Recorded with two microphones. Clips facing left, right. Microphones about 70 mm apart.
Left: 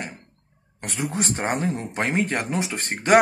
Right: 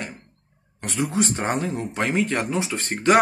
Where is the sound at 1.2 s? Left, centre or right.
Left.